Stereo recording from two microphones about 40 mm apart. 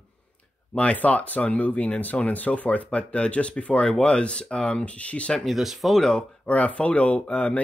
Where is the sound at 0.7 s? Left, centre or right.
Left.